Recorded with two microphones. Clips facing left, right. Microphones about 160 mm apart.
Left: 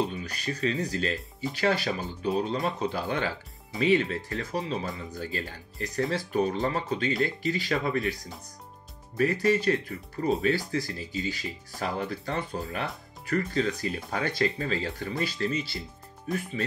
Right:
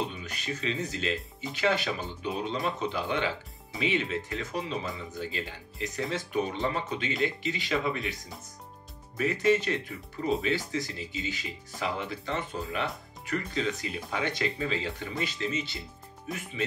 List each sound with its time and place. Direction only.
0.1 s speech: 40° left (ahead or behind)